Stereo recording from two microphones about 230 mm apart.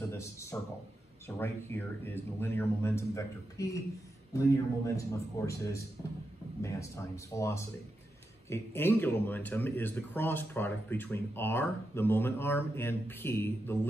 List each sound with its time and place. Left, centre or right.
0.2 s speech: centre
4.8 s speech: centre